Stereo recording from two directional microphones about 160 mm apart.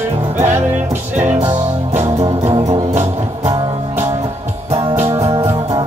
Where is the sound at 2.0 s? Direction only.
15° right (ahead or behind).